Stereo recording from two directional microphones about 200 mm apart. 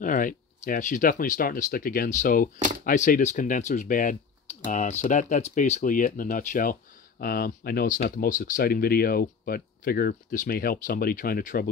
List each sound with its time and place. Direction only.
0.0 s speech: 40° left (ahead or behind)